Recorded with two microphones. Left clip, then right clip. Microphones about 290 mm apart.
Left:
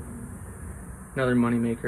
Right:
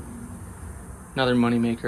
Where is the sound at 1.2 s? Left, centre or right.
Centre.